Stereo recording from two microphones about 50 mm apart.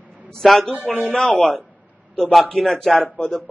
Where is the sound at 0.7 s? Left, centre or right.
Right.